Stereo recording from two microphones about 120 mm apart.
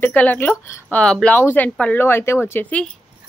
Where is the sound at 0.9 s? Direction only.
10° left (ahead or behind).